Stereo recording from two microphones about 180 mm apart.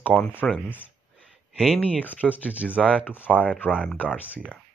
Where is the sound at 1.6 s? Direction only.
5° right (ahead or behind).